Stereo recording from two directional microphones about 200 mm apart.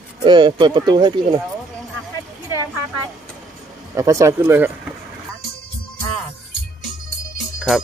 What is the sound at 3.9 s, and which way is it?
Speech, 15° right (ahead or behind).